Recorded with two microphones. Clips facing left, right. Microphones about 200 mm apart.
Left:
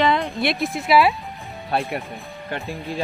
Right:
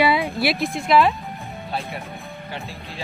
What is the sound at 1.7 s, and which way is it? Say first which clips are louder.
Speech: left 6 dB; 60° left (ahead or behind).